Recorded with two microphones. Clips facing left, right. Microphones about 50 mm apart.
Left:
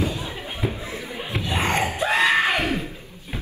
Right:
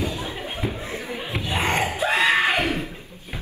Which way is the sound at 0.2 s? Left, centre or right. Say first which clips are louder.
Right 1 dB; right.